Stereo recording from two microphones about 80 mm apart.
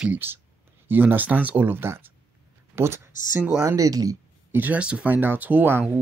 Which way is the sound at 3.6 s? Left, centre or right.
Right.